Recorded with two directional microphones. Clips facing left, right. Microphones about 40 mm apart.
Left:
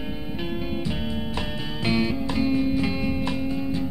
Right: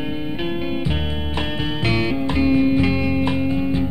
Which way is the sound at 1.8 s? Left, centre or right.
Right.